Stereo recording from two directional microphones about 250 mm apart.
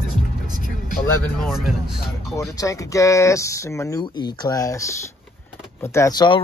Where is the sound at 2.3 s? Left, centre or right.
Centre.